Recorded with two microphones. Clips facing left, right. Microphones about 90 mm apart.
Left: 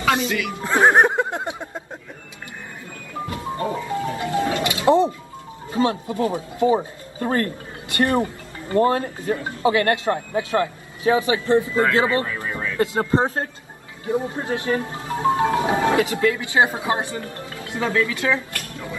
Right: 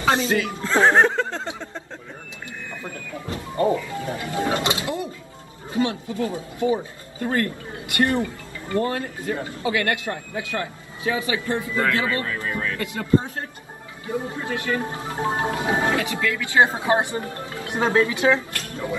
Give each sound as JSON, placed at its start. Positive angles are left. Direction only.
{"t": 0.0, "sound": "speech", "side_deg": -30}
{"t": 0.6, "sound": "music", "side_deg": 20}
{"t": 3.7, "sound": "speech", "side_deg": 30}
{"t": 4.4, "sound": "music", "side_deg": -25}
{"t": 4.8, "sound": "a man's voice", "side_deg": 30}
{"t": 12.3, "sound": "a sound", "side_deg": 20}
{"t": 12.7, "sound": "speech", "side_deg": 30}
{"t": 13.0, "sound": "speech", "side_deg": 40}
{"t": 14.0, "sound": "speech", "side_deg": 25}
{"t": 14.8, "sound": "speech", "side_deg": -25}
{"t": 15.8, "sound": "speech", "side_deg": 25}
{"t": 16.9, "sound": "speech", "side_deg": -20}
{"t": 18.3, "sound": "music", "side_deg": -25}